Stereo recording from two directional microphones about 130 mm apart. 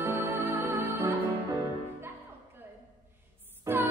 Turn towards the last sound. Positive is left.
turn(degrees=-15)  # may be behind; listen again after turning